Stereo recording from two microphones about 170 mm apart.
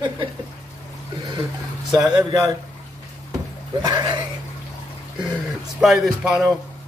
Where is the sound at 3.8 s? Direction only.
25° right (ahead or behind).